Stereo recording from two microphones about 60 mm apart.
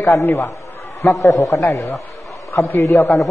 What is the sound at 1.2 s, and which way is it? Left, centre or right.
Speech, left.